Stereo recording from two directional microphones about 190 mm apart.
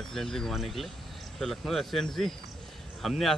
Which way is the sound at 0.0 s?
Centre (ahead or behind).